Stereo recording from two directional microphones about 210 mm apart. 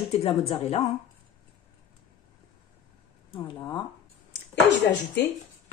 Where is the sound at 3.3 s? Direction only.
25° left (ahead or behind).